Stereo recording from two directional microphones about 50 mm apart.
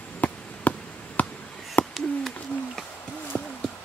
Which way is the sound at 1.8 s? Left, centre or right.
Left.